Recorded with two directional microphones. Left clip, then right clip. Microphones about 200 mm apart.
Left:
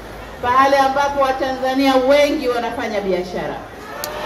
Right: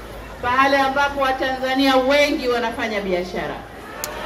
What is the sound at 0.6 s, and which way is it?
A man's voice, 50° left (ahead or behind).